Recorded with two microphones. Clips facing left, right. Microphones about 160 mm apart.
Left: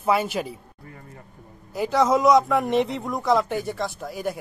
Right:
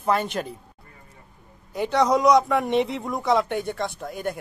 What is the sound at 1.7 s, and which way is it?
A man's voice, centre (ahead or behind).